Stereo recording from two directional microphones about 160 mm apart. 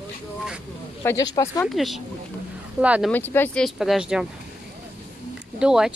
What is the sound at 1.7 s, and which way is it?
Speech, centre (ahead or behind).